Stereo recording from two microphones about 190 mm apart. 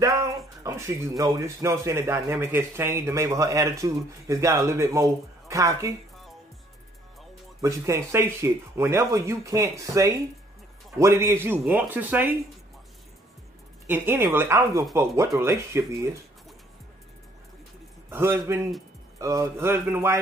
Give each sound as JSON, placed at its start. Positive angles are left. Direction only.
{"t": 0.0, "sound": "a sound", "side_deg": -20}
{"t": 0.7, "sound": "a man's voice", "side_deg": -15}
{"t": 7.6, "sound": "a man's voice", "side_deg": -15}
{"t": 13.8, "sound": "a man's voice", "side_deg": -10}
{"t": 18.1, "sound": "a man's voice", "side_deg": -10}